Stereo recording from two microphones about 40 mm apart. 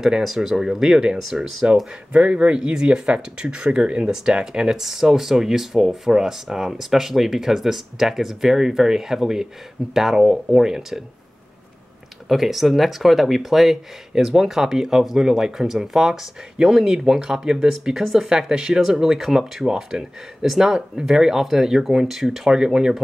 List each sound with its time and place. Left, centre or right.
0.2 s speech: centre
2.1 s speech: right; by 11.0 s centre
12.3 s speech: centre